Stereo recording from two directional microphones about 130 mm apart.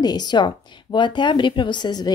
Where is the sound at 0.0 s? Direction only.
30° left (ahead or behind).